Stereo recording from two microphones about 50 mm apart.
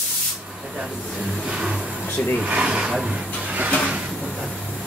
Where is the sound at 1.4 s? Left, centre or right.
Centre.